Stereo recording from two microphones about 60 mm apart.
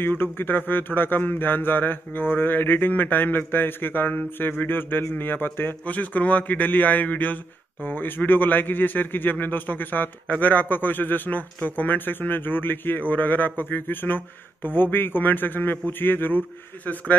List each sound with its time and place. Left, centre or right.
0.0 s speech: left